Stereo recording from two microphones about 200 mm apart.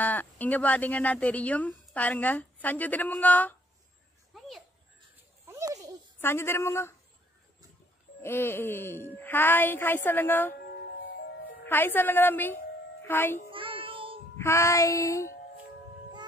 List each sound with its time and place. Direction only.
0.0 s speech: 10° left (ahead or behind)
4.3 s a sound: centre (ahead or behind)
5.5 s children playing: 15° right (ahead or behind)
6.2 s speech: 10° left (ahead or behind)
8.2 s speech: 10° left (ahead or behind)
11.6 s a child's voice: 10° left (ahead or behind)
13.5 s child singing: 25° right (ahead or behind)
14.3 s speech: 15° left (ahead or behind)